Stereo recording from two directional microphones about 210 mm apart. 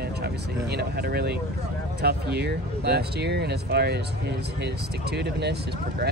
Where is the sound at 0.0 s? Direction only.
50° right (ahead or behind).